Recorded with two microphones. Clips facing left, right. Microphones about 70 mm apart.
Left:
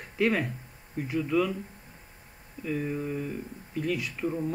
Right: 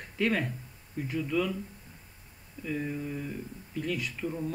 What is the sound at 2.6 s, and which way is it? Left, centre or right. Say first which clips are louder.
Mantra: left 3 dB; left.